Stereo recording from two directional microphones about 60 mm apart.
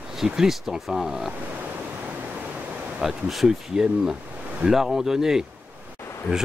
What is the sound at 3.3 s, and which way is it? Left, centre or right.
Speech, centre.